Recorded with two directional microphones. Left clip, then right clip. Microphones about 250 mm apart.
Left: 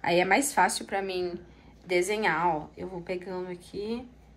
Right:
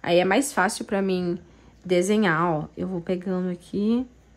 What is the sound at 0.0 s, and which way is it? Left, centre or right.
A woman's voice, right.